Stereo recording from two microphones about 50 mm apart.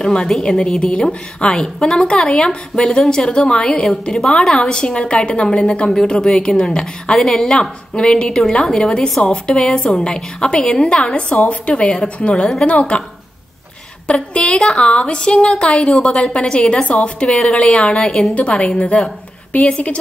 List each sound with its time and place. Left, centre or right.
0.0 s a woman's voice: centre
14.0 s a woman's voice: left